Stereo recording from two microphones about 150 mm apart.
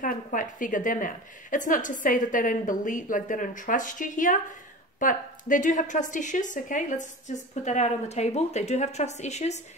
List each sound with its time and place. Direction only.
0.0 s a woman's voice: 65° left (ahead or behind); by 9.6 s 50° left (ahead or behind)